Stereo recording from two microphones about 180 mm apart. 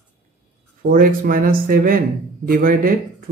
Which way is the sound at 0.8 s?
50° right (ahead or behind).